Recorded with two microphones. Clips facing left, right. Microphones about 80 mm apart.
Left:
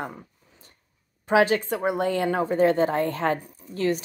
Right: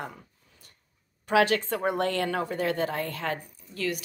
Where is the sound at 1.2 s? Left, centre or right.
Left.